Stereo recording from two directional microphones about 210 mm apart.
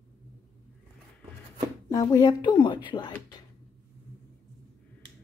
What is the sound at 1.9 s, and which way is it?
Speech, 15° left (ahead or behind).